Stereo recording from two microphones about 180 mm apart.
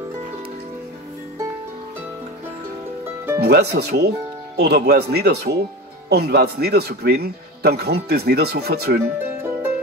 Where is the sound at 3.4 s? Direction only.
65° right (ahead or behind).